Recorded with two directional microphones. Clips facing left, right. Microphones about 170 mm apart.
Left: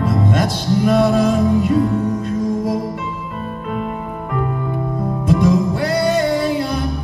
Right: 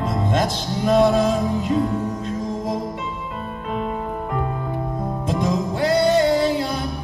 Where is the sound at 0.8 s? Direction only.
20° right (ahead or behind).